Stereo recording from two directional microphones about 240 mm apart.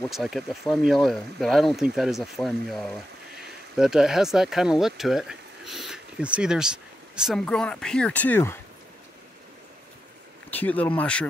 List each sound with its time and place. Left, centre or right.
0.1 s speech: centre
10.5 s speech: centre